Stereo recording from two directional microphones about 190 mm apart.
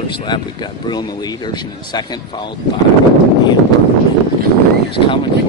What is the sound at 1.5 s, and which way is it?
Speech, 20° left (ahead or behind).